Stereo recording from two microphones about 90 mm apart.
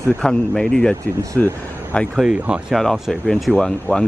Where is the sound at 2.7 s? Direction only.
Centre (ahead or behind).